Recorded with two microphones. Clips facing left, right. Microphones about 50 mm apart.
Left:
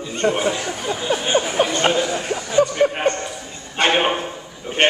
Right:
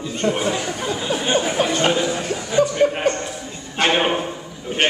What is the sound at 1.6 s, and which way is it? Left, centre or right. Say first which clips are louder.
Speech: left 3 dB; left.